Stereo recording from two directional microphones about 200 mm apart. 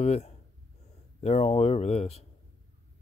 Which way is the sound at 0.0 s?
35° left (ahead or behind).